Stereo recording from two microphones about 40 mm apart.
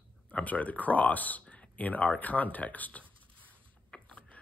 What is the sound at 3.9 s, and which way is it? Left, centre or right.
Mechanisms, left.